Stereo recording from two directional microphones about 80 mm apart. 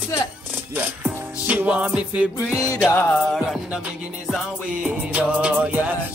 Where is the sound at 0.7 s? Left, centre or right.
Centre.